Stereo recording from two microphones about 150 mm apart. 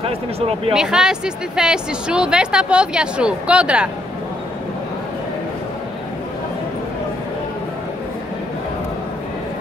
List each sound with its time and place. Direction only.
0.0 s speech: 40° right (ahead or behind)
0.7 s speech: 5° right (ahead or behind)